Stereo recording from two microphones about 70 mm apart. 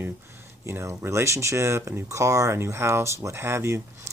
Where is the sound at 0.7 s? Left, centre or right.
Right.